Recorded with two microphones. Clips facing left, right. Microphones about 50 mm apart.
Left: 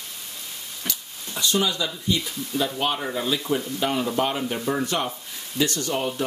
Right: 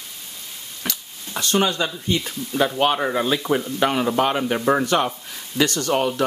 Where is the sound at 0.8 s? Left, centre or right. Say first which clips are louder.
Right 4 dB; right.